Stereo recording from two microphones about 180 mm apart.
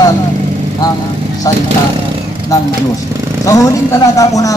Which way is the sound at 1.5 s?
20° left (ahead or behind).